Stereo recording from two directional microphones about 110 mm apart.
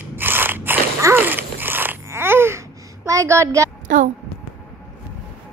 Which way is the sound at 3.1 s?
30° right (ahead or behind).